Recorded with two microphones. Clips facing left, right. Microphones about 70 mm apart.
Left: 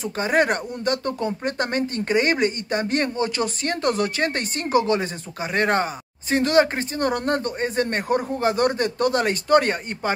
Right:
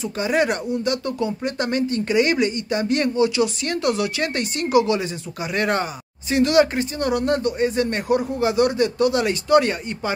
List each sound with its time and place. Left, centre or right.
0.0 s speech: left